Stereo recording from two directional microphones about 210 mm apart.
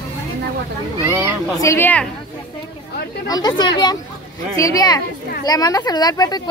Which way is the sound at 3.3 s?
20° left (ahead or behind).